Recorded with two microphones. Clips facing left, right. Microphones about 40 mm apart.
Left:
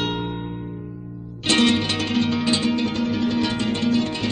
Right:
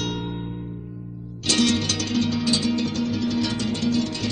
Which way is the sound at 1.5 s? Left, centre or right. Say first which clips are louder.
Left 3 dB; left.